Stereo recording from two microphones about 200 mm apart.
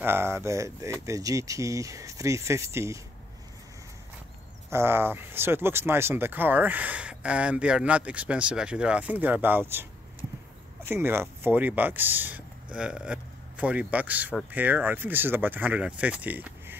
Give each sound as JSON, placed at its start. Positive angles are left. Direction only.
{"t": 0.0, "sound": "speech", "side_deg": -10}
{"t": 4.6, "sound": "speech", "side_deg": -10}
{"t": 10.9, "sound": "speech", "side_deg": -10}